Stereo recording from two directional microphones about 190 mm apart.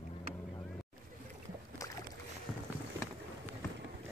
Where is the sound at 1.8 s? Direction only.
15° left (ahead or behind).